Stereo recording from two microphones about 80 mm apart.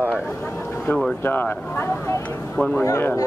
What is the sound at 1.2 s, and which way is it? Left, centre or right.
Speech, left.